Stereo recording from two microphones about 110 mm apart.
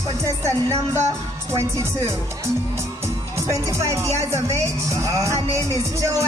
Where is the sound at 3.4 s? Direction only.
25° right (ahead or behind).